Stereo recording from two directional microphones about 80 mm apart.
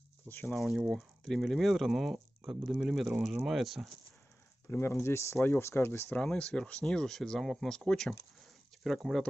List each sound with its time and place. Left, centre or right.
0.3 s speech: left
0.6 s speech: centre
4.6 s speech: left
6.1 s speech: centre